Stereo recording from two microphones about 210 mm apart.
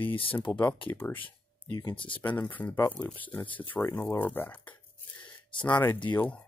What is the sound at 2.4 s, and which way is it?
Speech, 10° left (ahead or behind).